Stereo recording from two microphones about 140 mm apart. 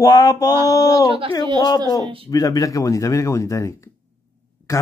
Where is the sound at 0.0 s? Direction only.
25° left (ahead or behind).